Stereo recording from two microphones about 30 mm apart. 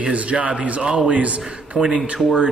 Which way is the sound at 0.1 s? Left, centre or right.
Right.